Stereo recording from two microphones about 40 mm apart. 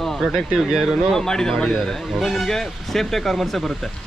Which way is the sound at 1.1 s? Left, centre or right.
Centre.